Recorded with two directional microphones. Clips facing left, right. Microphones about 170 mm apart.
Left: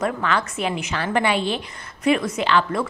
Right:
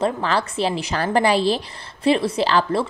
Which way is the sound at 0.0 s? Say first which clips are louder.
Right 2 dB; 30° right (ahead or behind).